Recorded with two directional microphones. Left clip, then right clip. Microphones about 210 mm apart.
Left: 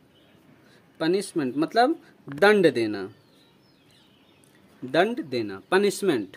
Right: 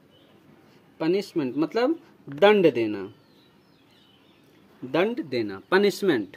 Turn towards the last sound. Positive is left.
turn(degrees=0)  # may be behind; listen again after turning